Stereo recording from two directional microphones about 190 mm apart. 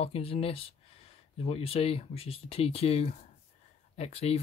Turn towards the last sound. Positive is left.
turn(degrees=35)  # may be behind; listen again after turning